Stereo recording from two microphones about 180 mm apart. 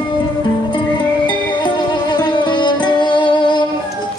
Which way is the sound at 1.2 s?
25° left (ahead or behind).